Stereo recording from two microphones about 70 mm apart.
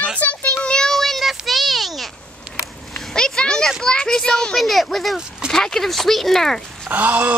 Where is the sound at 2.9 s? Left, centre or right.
Centre.